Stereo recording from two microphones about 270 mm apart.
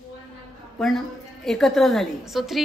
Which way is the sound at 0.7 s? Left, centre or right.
Centre.